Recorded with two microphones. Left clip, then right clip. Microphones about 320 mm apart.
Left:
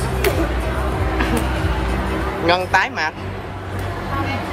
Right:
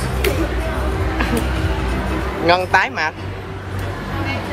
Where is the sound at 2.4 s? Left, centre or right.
Centre.